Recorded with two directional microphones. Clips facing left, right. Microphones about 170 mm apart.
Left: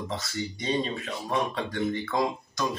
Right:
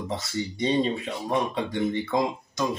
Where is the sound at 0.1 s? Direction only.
25° right (ahead or behind).